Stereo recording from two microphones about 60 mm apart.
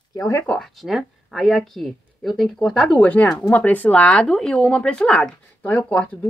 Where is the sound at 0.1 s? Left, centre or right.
Left.